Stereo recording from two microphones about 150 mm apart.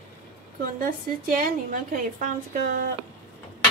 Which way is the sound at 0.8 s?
70° right (ahead or behind).